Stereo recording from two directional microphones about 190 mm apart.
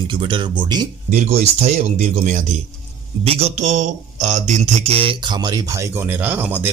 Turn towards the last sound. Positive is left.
turn(degrees=-10)  # may be behind; listen again after turning